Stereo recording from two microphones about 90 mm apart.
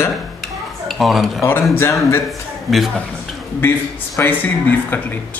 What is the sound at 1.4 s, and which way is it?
Speech, 30° left (ahead or behind).